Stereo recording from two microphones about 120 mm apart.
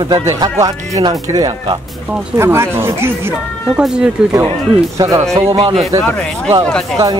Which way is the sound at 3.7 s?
5° right (ahead or behind).